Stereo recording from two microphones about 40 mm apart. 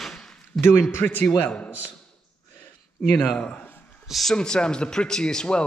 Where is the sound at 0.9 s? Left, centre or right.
Left.